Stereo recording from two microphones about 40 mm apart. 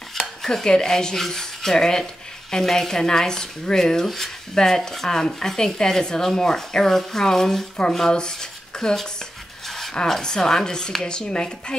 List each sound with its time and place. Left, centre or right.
0.1 s speech: centre
10.0 s speech: centre